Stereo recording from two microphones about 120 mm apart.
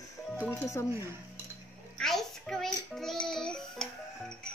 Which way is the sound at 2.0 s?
5° left (ahead or behind).